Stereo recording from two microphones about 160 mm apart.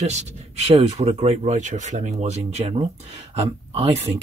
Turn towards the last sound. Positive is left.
turn(degrees=-40)  # may be behind; listen again after turning